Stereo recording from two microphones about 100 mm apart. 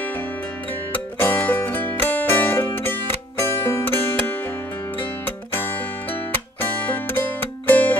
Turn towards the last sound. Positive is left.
turn(degrees=20)  # may be behind; listen again after turning